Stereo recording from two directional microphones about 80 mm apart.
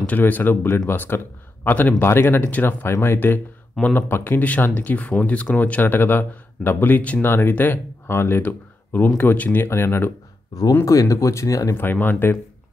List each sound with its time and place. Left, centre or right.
0.0 s speech: left
11.7 s speech: left